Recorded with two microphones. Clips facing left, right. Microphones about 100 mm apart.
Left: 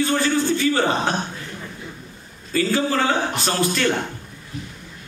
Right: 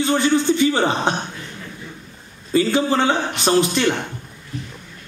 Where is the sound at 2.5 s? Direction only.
20° right (ahead or behind).